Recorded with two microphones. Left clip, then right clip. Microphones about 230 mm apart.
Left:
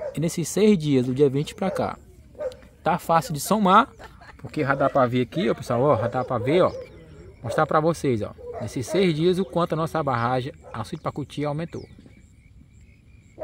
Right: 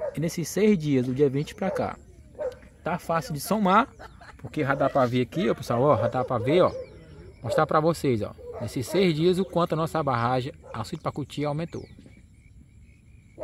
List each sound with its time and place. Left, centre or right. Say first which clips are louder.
0.1 s speech: left 3 dB; centre
4.0 s a sound: left 1 dB; right
4.4 s speech: left 2 dB; centre